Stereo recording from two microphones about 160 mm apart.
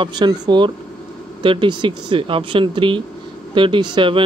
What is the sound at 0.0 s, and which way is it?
Speech, 30° right (ahead or behind).